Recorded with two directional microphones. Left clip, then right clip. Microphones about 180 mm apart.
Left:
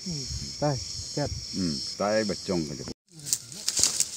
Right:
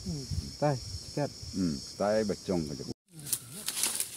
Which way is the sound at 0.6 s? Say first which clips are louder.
Left 1 dB; 35° left (ahead or behind).